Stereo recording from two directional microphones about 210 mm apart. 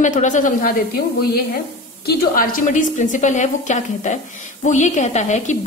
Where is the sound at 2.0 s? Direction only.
45° left (ahead or behind).